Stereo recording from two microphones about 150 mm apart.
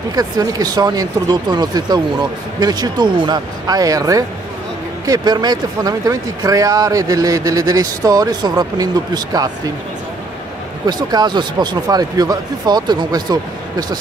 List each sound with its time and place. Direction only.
0.1 s speech: 25° right (ahead or behind)
10.9 s speech: 25° right (ahead or behind)